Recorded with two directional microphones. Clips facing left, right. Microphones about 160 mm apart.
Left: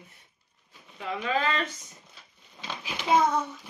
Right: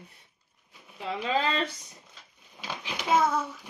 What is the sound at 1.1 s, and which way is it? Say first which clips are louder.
Speech: even; 30° right (ahead or behind).